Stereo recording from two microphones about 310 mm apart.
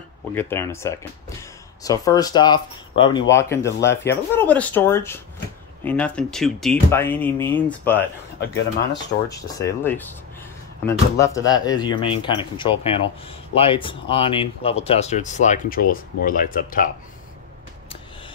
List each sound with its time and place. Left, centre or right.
0.3 s speech: centre; by 16.9 s left